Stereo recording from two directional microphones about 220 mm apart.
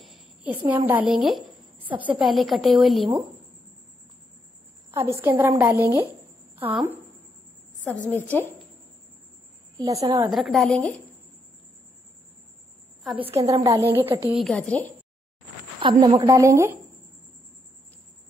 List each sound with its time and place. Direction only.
0.0 s a sound: 5° right (ahead or behind)
0.7 s a woman's voice: 5° right (ahead or behind)
5.4 s a woman's voice: 10° right (ahead or behind)
7.8 s a woman's voice: 5° left (ahead or behind)
9.8 s a woman's voice: 15° right (ahead or behind)
10.3 s a woman's voice: centre (ahead or behind)
13.0 s a woman's voice: centre (ahead or behind)
13.4 s a woman's voice: 15° right (ahead or behind)
14.3 s a woman's voice: centre (ahead or behind)
15.8 s a woman's voice: 20° right (ahead or behind)